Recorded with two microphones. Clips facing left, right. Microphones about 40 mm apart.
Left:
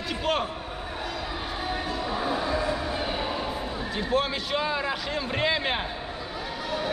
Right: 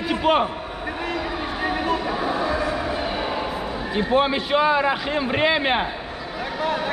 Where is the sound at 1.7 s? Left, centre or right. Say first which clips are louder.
Right 6 dB; right.